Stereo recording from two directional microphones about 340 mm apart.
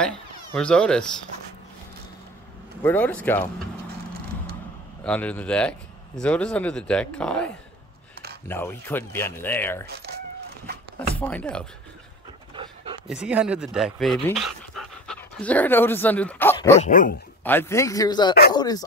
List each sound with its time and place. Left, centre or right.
0.6 s speech: centre
2.8 s speech: centre
5.0 s speech: centre
9.8 s coin: right
11.1 s speech: centre
12.5 s dog: centre
13.1 s speech: centre
16.8 s dog: left
17.4 s speech: centre